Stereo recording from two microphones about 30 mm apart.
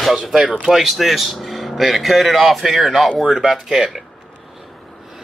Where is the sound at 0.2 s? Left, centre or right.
Right.